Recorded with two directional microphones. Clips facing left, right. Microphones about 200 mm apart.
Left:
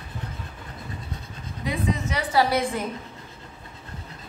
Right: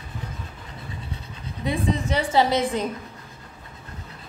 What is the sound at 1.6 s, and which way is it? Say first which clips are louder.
A woman's voice: right 2 dB; 30° right (ahead or behind).